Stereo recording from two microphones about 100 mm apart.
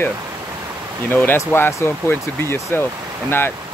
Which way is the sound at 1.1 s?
20° left (ahead or behind).